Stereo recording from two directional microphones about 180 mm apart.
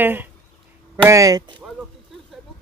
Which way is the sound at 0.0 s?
10° right (ahead or behind).